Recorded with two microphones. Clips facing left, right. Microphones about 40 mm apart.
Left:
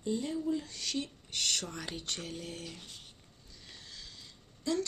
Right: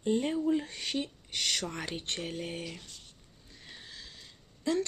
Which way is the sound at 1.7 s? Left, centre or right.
Right.